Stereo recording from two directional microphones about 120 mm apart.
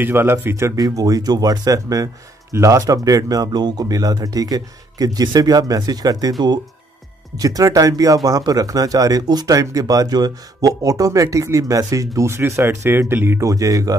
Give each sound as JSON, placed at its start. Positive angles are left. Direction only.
{"t": 0.0, "sound": "speech", "side_deg": -20}
{"t": 7.3, "sound": "speech", "side_deg": -30}